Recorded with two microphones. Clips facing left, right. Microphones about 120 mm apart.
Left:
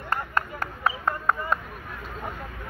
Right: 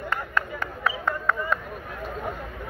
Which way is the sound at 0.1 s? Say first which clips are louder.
Left 2 dB; 40° left (ahead or behind).